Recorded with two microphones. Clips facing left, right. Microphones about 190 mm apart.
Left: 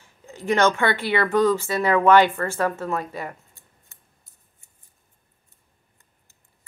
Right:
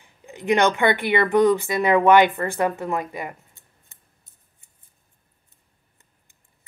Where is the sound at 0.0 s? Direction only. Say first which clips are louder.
Right 1 dB; 15° right (ahead or behind).